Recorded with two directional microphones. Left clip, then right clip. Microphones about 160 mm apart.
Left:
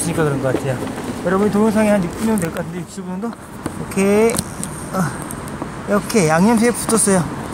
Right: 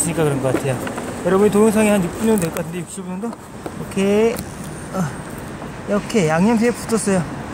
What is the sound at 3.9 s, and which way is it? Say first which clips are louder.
Speech: left 2 dB; 5° right (ahead or behind).